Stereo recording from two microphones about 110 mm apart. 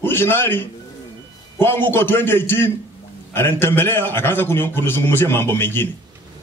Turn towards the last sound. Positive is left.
turn(degrees=20)  # may be behind; listen again after turning